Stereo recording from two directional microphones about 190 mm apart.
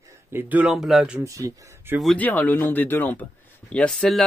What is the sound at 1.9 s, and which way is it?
Speech, 5° left (ahead or behind).